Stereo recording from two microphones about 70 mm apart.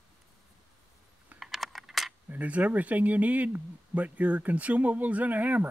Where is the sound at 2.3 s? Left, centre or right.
Right.